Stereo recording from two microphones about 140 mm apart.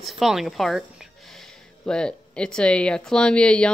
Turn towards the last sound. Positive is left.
turn(degrees=5)  # may be behind; listen again after turning